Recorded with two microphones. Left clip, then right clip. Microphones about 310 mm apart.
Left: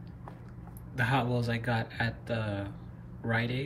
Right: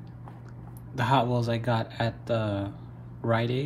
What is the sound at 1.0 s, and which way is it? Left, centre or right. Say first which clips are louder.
Speech: right 5 dB; centre.